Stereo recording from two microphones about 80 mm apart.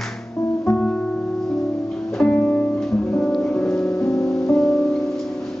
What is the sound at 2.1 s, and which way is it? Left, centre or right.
Music, centre.